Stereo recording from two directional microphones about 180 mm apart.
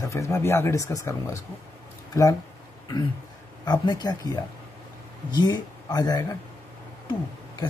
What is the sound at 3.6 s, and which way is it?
A man's voice, 20° left (ahead or behind).